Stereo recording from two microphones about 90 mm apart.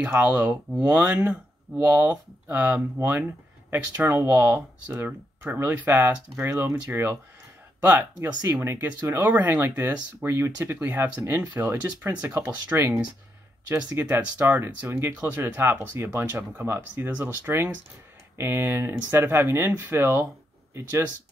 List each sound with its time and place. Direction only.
0.0 s speech: 15° right (ahead or behind); by 4.6 s 35° right (ahead or behind)
4.9 s speech: 20° right (ahead or behind)
8.4 s speech: 25° right (ahead or behind)
12.7 s speech: 35° right (ahead or behind)
13.7 s speech: 20° right (ahead or behind)